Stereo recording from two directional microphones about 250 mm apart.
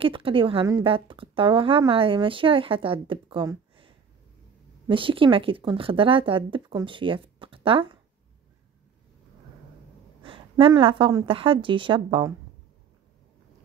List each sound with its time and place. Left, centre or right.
0.0 s a woman's voice: right
10.6 s a woman's voice: right